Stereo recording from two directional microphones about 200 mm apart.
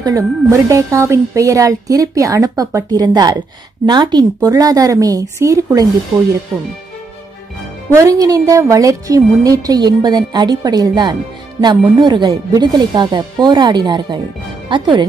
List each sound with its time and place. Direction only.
0.0 s a woman's voice: 15° right (ahead or behind)
7.9 s a woman's voice: 15° right (ahead or behind)